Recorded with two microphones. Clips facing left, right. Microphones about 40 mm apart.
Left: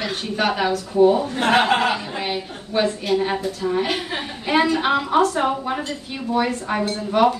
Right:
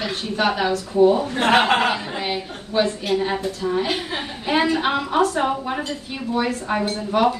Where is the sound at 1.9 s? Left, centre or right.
Centre.